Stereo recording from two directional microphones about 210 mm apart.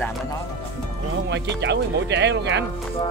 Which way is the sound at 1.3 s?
55° right (ahead or behind).